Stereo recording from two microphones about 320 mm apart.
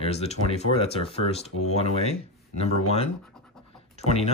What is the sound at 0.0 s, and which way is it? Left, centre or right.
Speech, centre.